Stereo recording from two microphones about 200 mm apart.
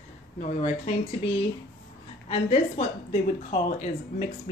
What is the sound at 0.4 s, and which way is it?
Speech, 30° left (ahead or behind).